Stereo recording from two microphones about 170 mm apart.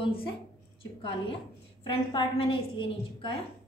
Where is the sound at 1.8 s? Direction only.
30° left (ahead or behind).